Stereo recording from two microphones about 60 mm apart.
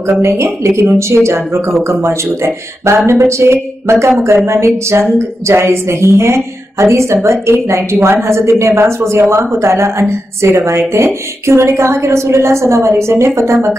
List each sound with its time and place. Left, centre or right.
0.2 s a woman's voice: right